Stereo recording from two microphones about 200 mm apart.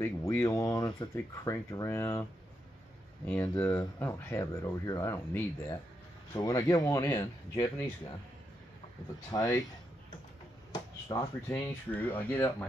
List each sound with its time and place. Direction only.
0.0 s speech: 10° left (ahead or behind)
3.3 s speech: 10° left (ahead or behind)
9.3 s speech: 15° left (ahead or behind)
10.7 s speech: 20° left (ahead or behind)